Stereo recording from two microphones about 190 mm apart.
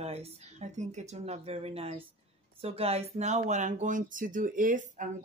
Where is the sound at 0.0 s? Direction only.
35° right (ahead or behind).